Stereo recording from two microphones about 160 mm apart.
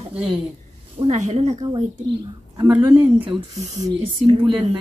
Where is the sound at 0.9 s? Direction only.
45° right (ahead or behind).